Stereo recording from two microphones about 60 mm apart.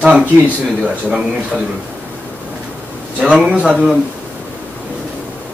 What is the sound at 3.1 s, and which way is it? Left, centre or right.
Speech, centre.